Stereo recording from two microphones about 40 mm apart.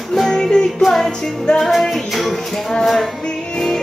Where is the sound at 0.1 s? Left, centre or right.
Centre.